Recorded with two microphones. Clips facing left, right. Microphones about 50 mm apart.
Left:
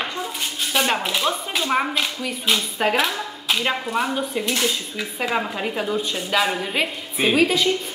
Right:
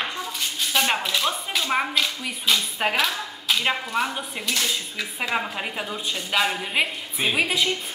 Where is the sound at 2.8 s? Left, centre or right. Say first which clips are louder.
Left 3 dB; centre.